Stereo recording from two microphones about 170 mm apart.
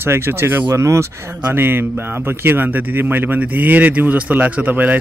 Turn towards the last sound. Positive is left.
turn(degrees=-10)  # may be behind; listen again after turning